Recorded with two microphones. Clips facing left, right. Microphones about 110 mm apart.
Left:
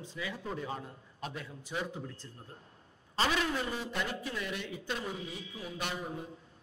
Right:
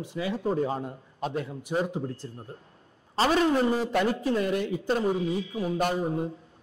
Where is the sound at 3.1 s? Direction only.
40° right (ahead or behind).